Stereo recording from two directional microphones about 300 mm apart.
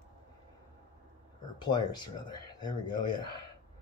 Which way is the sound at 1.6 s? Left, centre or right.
Centre.